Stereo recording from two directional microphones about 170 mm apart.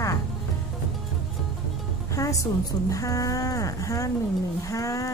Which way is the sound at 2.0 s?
20° left (ahead or behind).